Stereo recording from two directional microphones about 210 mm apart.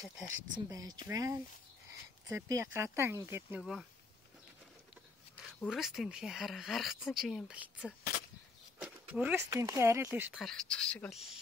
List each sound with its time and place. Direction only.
0.7 s speech: 15° right (ahead or behind)
5.6 s speech: centre (ahead or behind)
10.4 s speech: centre (ahead or behind)